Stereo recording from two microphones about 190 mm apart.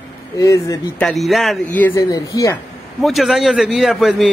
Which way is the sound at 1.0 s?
Centre (ahead or behind).